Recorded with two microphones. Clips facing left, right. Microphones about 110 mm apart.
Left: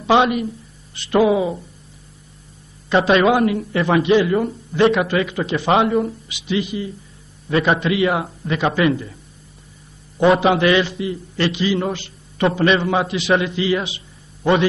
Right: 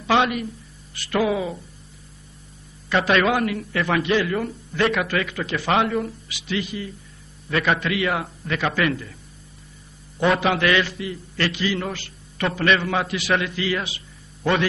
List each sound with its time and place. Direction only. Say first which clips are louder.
0.0 s a man's voice: left 5 dB; 25° left (ahead or behind)
2.9 s a man's voice: left 5 dB; 25° left (ahead or behind)
10.1 s a man's voice: left 6 dB; 25° left (ahead or behind)